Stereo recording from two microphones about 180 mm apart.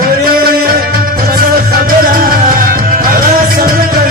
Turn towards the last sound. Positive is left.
turn(degrees=-55)  # may be behind; listen again after turning